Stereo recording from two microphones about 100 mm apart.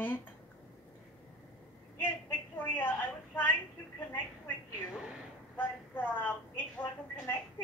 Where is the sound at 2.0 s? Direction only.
20° left (ahead or behind).